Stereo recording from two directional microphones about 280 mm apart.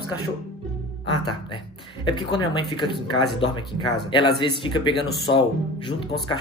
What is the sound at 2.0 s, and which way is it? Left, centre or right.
Speech, centre.